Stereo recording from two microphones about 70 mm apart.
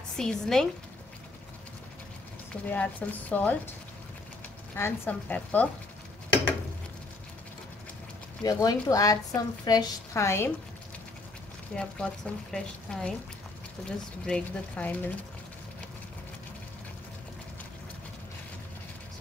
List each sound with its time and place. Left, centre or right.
0.2 s speech: centre
2.7 s speech: left
4.7 s a woman's voice: left
5.3 s speech: left
8.5 s speech: left
10.1 s a woman's voice: left
11.7 s speech: centre